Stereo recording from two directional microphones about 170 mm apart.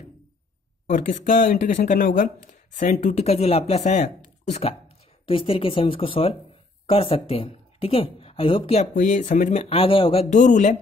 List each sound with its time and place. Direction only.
0.8 s speech: 50° left (ahead or behind); by 8.8 s 35° left (ahead or behind)
8.9 s speech: 50° left (ahead or behind); by 10.2 s 30° left (ahead or behind)
10.3 s speech: 45° left (ahead or behind)